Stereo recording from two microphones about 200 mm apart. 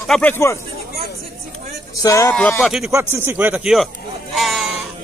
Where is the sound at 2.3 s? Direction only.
5° left (ahead or behind).